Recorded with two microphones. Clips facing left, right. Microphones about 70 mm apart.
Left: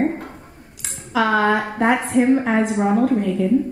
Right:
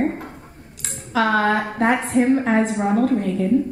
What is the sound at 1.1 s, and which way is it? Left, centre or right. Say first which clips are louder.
A woman's voice: left 1 dB; centre.